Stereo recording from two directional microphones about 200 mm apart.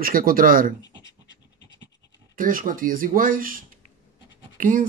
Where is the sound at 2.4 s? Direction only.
45° right (ahead or behind).